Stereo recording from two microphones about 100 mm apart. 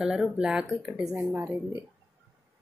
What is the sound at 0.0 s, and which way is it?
Speech, 5° right (ahead or behind).